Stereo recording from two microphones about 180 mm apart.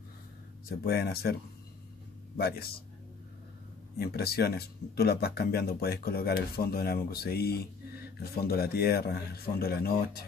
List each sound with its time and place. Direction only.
0.7 s speech: 60° left (ahead or behind)
2.3 s speech: 60° left (ahead or behind)
4.0 s speech: 60° left (ahead or behind)